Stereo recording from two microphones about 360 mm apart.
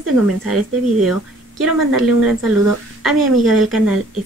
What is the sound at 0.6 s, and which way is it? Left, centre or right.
Speech, right.